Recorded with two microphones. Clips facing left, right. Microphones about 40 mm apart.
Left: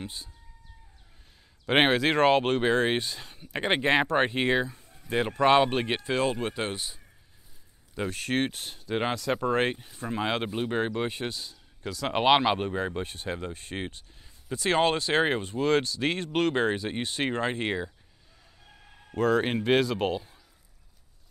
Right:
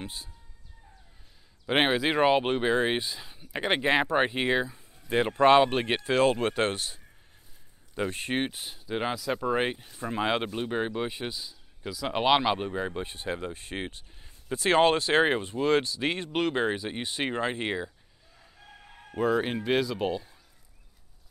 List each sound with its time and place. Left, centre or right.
1.7 s speech: centre
2.0 s speech: centre
5.0 s speech: centre
6.0 s speech: right
8.1 s speech: right
8.4 s speech: centre
8.9 s speech: centre
10.4 s speech: centre
13.0 s speech: right
14.5 s speech: right
15.6 s speech: centre
16.5 s speech: centre
19.1 s speech: centre
19.4 s speech: centre